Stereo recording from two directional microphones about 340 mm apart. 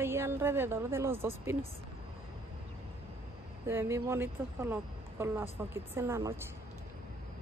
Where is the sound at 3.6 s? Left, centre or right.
Centre.